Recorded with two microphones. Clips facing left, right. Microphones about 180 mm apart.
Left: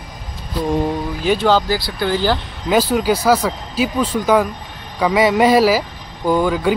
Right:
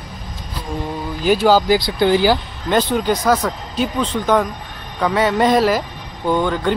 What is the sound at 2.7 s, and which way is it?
Speech, 5° left (ahead or behind).